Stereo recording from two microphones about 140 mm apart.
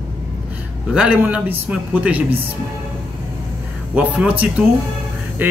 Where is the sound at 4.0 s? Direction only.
10° right (ahead or behind).